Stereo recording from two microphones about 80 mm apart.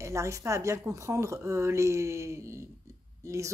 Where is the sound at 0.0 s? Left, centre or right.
Right.